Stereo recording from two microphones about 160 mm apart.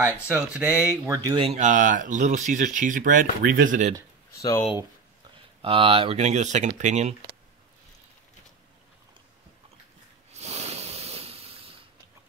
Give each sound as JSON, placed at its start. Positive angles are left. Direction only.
{"t": 0.0, "sound": "speech", "side_deg": -10}
{"t": 1.4, "sound": "speech", "side_deg": -45}
{"t": 5.6, "sound": "speech", "side_deg": -35}
{"t": 10.4, "sound": "a sound", "side_deg": -40}